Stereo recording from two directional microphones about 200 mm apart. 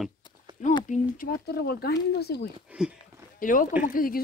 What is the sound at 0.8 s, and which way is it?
Speech, 40° left (ahead or behind).